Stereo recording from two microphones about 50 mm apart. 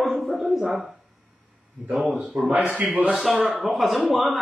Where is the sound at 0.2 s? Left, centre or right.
Centre.